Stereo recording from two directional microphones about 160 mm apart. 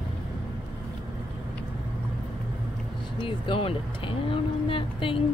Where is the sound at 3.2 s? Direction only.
30° left (ahead or behind).